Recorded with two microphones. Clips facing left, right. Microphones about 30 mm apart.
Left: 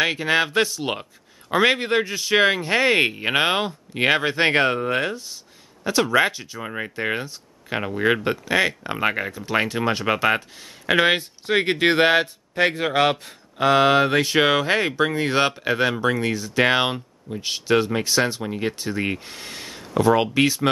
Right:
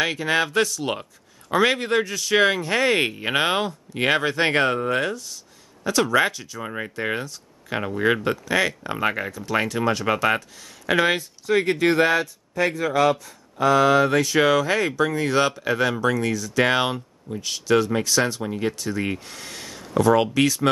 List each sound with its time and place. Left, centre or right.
0.0 s speech: centre